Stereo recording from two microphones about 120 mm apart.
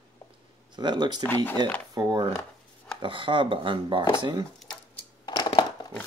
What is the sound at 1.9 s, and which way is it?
Speech, 30° right (ahead or behind).